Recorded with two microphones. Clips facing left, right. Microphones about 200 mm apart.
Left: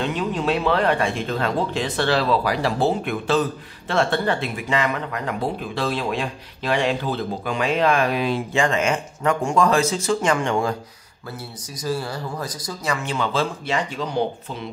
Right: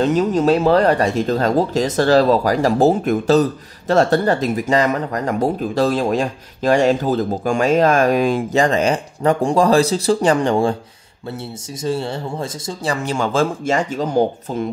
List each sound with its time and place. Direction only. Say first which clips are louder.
0.0 s speech: right 8 dB; 40° right (ahead or behind)
11.8 s speech: right 4 dB; 25° right (ahead or behind); by 14.7 s 45° right (ahead or behind)